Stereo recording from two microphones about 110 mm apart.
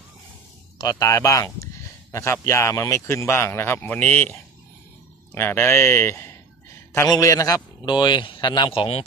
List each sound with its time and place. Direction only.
0.7 s a man's voice: 35° left (ahead or behind); by 9.0 s 60° left (ahead or behind)